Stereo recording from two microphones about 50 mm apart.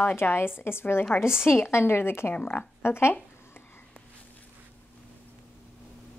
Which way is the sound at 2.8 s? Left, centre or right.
Left.